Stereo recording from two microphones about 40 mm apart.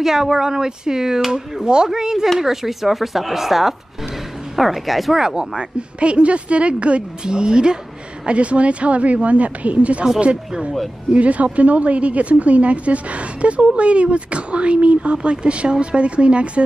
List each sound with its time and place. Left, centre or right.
0.0 s speech: centre
5.2 s speech: centre
5.8 s a woman's voice: right